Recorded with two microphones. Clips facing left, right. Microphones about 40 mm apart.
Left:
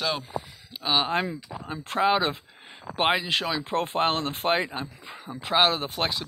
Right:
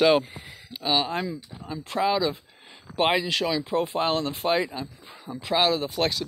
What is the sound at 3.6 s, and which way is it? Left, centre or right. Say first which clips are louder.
Speech: even; left.